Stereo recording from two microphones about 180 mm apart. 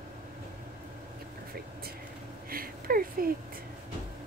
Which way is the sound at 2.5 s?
55° right (ahead or behind).